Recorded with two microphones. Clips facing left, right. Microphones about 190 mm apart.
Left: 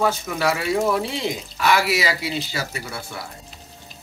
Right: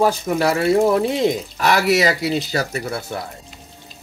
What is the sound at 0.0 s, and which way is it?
Speech, 35° right (ahead or behind).